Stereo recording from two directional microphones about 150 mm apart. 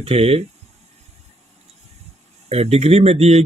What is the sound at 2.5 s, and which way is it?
Speech, 45° right (ahead or behind).